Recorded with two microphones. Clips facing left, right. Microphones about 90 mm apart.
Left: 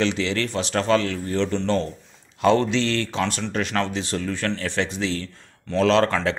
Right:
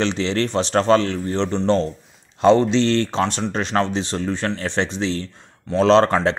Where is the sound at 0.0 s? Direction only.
30° right (ahead or behind).